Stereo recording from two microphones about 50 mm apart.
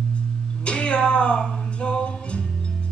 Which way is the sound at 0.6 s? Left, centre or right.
Left.